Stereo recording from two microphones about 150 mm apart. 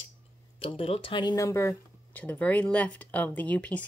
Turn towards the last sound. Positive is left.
turn(degrees=10)  # may be behind; listen again after turning